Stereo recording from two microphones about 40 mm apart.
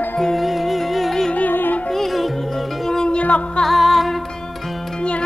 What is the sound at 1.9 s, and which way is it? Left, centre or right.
Music, centre.